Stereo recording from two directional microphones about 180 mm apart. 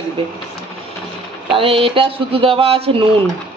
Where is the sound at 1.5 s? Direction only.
30° right (ahead or behind).